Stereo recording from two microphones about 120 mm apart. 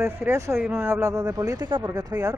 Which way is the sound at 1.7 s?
40° right (ahead or behind).